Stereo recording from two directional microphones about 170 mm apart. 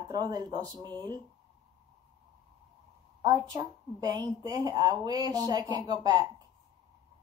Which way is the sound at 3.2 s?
25° right (ahead or behind).